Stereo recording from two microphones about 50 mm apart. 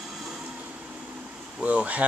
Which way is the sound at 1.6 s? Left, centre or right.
Right.